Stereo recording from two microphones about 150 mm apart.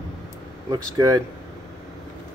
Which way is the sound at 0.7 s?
25° right (ahead or behind).